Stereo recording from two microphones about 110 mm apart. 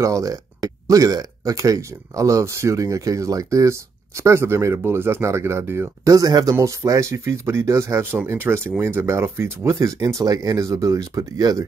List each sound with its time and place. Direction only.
0.0 s speech: 30° right (ahead or behind)